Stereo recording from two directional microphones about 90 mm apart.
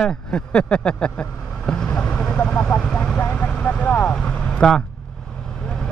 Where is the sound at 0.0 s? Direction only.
10° left (ahead or behind).